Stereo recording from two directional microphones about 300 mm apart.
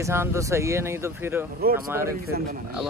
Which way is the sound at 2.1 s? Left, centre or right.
Right.